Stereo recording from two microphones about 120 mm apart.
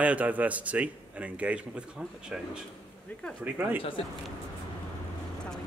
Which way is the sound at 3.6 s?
15° right (ahead or behind).